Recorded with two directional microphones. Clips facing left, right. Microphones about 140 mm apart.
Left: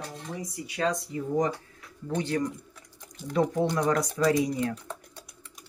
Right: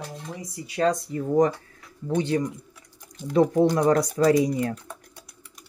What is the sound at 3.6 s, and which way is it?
Speech, 35° right (ahead or behind).